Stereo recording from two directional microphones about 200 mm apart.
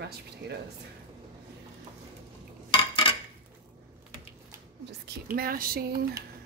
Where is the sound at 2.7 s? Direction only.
25° left (ahead or behind).